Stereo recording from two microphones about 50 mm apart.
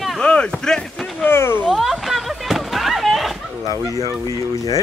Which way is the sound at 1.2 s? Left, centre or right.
Left.